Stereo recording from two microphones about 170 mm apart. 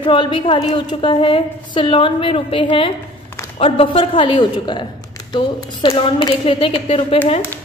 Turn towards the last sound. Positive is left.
turn(degrees=35)  # may be behind; listen again after turning